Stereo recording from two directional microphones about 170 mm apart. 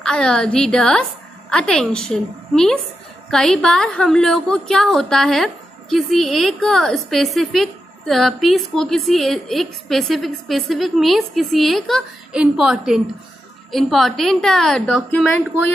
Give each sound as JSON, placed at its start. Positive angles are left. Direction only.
{"t": 0.0, "sound": "a woman's voice", "side_deg": 5}